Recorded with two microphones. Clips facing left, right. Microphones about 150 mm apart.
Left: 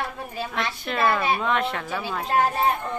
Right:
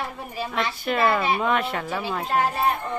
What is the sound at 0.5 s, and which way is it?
A woman's voice, 5° right (ahead or behind).